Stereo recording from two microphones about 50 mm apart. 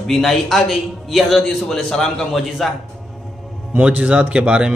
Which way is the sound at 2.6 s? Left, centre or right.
Centre.